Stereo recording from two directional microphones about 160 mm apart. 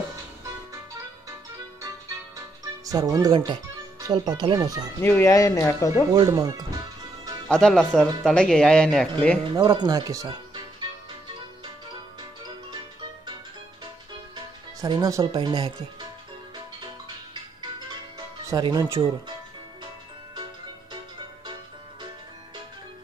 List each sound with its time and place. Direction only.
2.3 s music: 20° right (ahead or behind)
4.0 s speech: 25° right (ahead or behind)
5.0 s speech: 15° left (ahead or behind)
6.1 s speech: 25° right (ahead or behind)
7.4 s speech: 5° left (ahead or behind)
9.5 s speech: 30° right (ahead or behind)
14.3 s speech: 25° right (ahead or behind)
18.5 s speech: 25° right (ahead or behind)